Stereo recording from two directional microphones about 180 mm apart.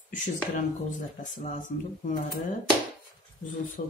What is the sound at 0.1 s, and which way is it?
Speech, 45° left (ahead or behind).